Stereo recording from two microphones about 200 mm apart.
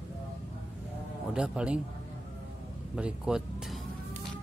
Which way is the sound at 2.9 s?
5° right (ahead or behind).